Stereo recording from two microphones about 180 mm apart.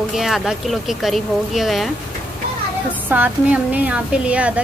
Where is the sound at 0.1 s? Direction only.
Centre (ahead or behind).